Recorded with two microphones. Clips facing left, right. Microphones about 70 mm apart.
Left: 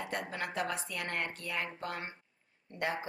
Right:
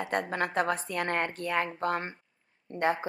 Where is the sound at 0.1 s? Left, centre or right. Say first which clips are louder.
Right 10 dB; right.